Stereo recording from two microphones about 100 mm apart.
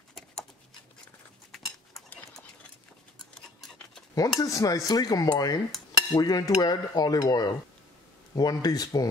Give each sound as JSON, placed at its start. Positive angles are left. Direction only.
{"t": 1.5, "sound": "cutlery", "side_deg": 0}
{"t": 3.6, "sound": "a sound", "side_deg": 5}
{"t": 4.4, "sound": "cutlery", "side_deg": 35}